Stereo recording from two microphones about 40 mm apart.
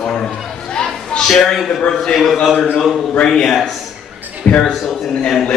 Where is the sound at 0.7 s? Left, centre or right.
Centre.